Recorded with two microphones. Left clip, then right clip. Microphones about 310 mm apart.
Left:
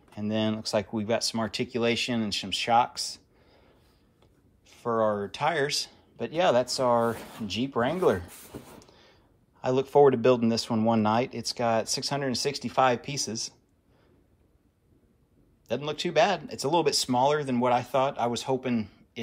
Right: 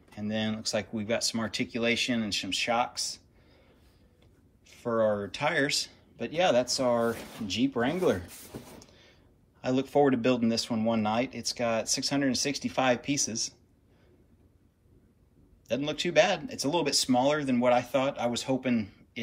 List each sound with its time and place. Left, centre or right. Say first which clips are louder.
0.1 s speech: left 4 dB; centre
4.6 s speech: left 1 dB; centre
8.6 s a sound: left 1 dB; centre
9.6 s speech: left 5 dB; centre
15.7 s speech: right 1 dB; centre